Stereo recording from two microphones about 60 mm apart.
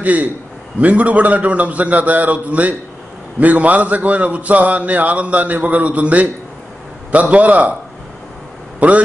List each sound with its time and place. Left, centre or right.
0.0 s a man's voice: right
8.7 s speech: right